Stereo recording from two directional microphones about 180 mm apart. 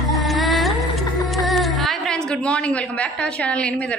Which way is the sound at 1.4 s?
Centre (ahead or behind).